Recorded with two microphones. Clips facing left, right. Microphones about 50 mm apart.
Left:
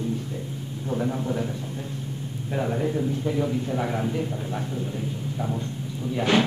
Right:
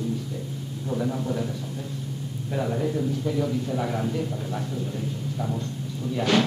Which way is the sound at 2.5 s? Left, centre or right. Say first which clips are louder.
Left 1 dB; left.